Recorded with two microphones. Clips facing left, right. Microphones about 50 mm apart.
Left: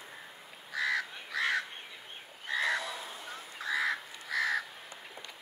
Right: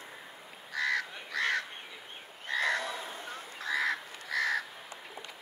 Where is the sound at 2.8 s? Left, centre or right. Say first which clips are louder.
Right 2 dB; right.